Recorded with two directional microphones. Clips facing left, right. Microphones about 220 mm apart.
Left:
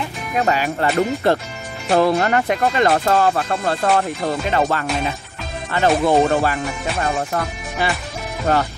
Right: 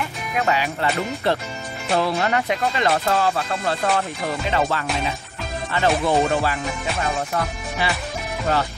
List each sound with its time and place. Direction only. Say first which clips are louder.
0.4 s speech: left 3 dB; 45° left (ahead or behind)
8.5 s speech: left 4 dB; 45° left (ahead or behind)